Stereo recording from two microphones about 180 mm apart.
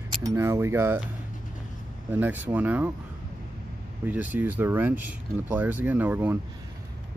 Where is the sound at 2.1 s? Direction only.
10° right (ahead or behind).